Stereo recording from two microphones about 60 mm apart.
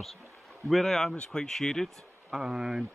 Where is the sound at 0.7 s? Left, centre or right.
Centre.